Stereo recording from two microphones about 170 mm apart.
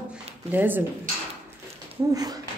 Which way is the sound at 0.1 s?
10° right (ahead or behind).